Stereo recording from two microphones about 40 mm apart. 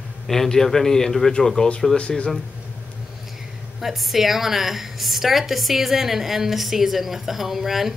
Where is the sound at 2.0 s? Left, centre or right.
Left.